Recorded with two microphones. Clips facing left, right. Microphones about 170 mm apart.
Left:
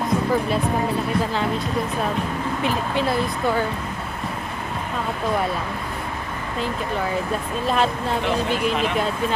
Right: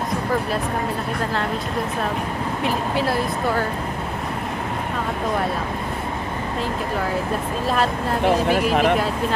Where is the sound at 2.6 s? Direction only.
Centre (ahead or behind).